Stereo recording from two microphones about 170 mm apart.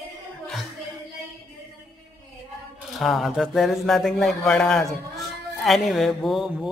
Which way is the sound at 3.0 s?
Centre (ahead or behind).